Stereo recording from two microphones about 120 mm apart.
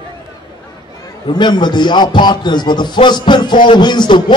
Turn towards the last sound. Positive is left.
turn(degrees=40)  # may be behind; listen again after turning